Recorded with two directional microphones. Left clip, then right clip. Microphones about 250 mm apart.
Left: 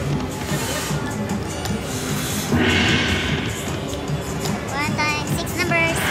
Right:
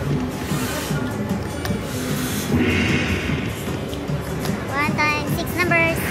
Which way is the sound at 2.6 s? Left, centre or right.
Centre.